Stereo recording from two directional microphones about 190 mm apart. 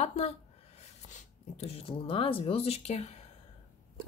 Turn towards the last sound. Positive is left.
turn(degrees=35)  # may be behind; listen again after turning